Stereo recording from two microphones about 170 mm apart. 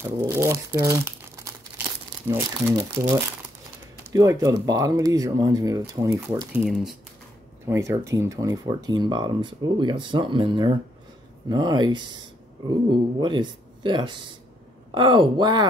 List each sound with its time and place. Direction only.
0.0 s speech: 15° right (ahead or behind)
6.6 s speech: centre (ahead or behind)
7.6 s speech: 15° right (ahead or behind)
13.2 s speech: 30° right (ahead or behind)